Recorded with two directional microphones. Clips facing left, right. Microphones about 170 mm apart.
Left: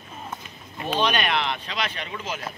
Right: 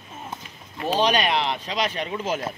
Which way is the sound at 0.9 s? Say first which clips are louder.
Right 3 dB; 35° right (ahead or behind).